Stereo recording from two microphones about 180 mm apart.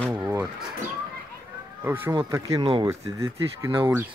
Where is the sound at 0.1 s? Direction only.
15° right (ahead or behind).